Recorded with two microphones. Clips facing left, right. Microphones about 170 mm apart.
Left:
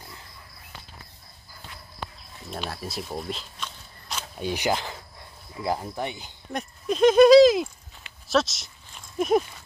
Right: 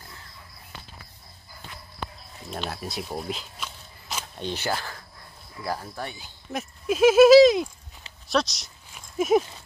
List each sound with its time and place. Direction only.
2.5 s speech: centre (ahead or behind)
4.4 s speech: 10° left (ahead or behind)
6.5 s speech: 5° right (ahead or behind)
8.3 s a sound: centre (ahead or behind)